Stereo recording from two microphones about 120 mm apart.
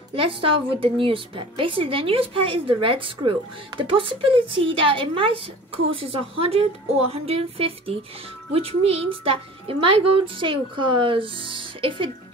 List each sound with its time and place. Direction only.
0.1 s a woman's voice: 50° right (ahead or behind)